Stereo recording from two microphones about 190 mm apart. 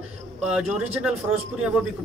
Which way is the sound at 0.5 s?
5° right (ahead or behind).